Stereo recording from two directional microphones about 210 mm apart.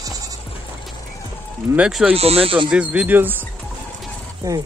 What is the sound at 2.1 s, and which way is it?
Speech, 30° right (ahead or behind).